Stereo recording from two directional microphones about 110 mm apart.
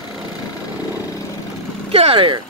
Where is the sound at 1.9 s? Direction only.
65° right (ahead or behind).